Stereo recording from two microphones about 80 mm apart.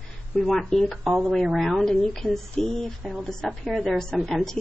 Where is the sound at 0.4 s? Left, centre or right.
Centre.